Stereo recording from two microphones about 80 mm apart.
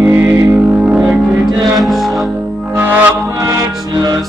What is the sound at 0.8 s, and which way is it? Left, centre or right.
Music, centre.